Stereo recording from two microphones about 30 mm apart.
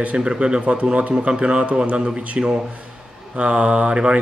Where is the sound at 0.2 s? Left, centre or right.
Right.